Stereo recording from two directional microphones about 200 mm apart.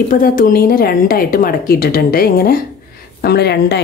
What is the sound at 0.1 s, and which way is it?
A woman's voice, 45° left (ahead or behind).